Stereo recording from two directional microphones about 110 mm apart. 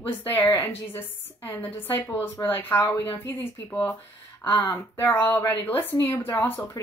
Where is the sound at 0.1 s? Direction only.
20° left (ahead or behind).